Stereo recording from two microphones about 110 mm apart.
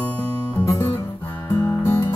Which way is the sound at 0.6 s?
30° left (ahead or behind).